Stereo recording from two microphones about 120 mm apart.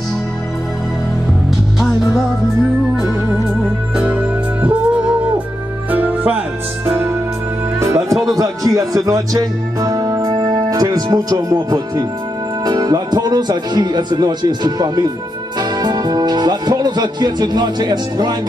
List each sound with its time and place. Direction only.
3.9 s music: 10° right (ahead or behind)
5.9 s music: 15° right (ahead or behind)
7.8 s music: 25° right (ahead or behind)
8.3 s speech: 30° right (ahead or behind)